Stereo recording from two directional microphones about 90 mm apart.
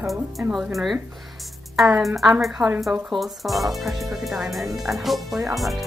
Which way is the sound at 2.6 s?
45° right (ahead or behind).